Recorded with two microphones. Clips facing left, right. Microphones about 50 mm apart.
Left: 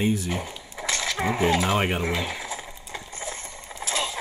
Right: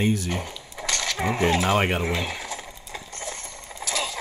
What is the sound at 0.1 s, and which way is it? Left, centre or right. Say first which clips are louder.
Speech: even; centre.